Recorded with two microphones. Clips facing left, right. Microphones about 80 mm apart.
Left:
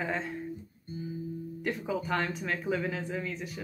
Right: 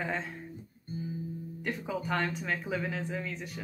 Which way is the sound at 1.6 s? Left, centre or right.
Centre.